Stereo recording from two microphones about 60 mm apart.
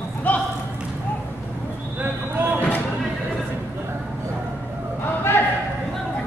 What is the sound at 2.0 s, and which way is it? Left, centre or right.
Basketball bounce, right.